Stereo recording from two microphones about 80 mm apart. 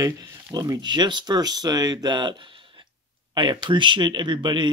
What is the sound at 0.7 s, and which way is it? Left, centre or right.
Speech, right.